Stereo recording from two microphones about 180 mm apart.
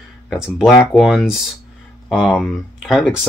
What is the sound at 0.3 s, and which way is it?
Speech, centre (ahead or behind).